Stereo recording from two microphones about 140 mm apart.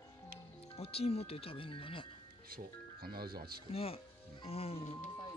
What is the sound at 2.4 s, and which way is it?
Speech, 90° right.